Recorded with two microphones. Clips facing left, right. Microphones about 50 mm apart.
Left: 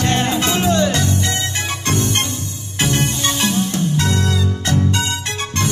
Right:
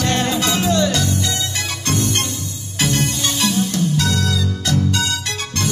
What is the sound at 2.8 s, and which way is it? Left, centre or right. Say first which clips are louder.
Music: left 1 dB; left.